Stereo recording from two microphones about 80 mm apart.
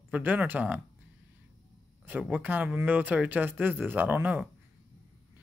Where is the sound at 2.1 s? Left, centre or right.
Centre.